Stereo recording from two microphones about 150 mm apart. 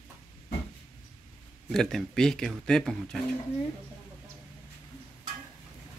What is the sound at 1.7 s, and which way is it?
Speech, 5° left (ahead or behind).